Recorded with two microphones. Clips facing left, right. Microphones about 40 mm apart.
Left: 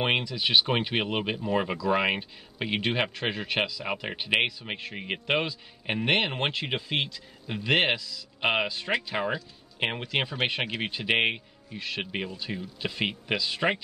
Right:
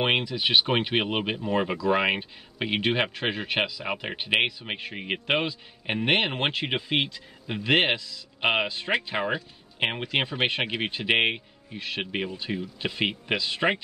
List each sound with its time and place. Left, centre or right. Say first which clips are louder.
0.0 s a man's voice: right 2 dB; centre
7.7 s a man's voice: right 2 dB; centre